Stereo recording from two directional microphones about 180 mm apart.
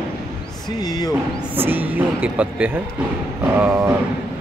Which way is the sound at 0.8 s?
20° left (ahead or behind).